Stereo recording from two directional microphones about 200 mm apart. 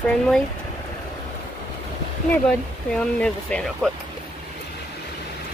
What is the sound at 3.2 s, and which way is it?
Speech, 5° left (ahead or behind).